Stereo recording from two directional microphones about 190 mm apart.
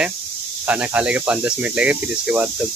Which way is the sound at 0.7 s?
5° right (ahead or behind).